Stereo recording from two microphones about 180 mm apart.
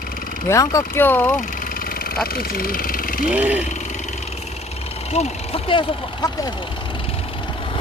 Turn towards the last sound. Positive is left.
turn(degrees=25)  # may be behind; listen again after turning